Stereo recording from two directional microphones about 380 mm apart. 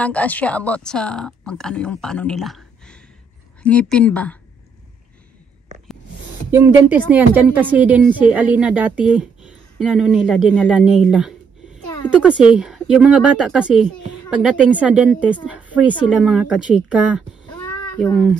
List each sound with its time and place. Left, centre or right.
0.0 s a woman's voice: centre
6.5 s a woman's voice: centre
17.5 s a sound: centre